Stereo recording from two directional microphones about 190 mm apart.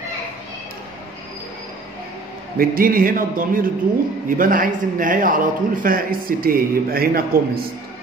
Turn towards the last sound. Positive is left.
turn(degrees=-50)  # may be behind; listen again after turning